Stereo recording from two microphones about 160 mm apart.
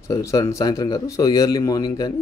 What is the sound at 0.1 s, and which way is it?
A man's voice, 20° left (ahead or behind).